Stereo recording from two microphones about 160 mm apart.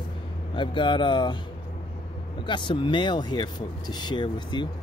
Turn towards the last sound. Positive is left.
turn(degrees=30)  # may be behind; listen again after turning